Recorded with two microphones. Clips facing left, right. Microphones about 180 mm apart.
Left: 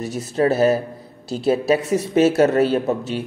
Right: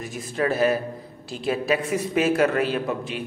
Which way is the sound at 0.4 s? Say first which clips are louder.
Left 5 dB; 35° left (ahead or behind).